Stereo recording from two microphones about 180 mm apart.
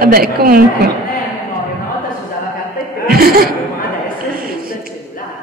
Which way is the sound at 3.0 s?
55° right (ahead or behind).